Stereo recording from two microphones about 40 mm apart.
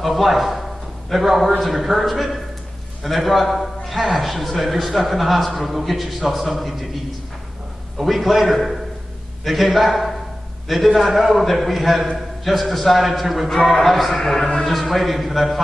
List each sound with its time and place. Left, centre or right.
0.0 s a man's voice: centre
8.0 s a man's voice: centre
13.5 s a man's voice: centre